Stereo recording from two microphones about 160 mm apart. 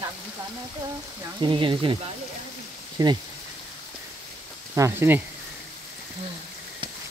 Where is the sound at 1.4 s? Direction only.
30° right (ahead or behind).